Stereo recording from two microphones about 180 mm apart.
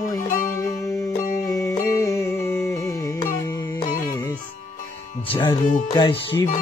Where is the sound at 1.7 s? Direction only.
15° left (ahead or behind).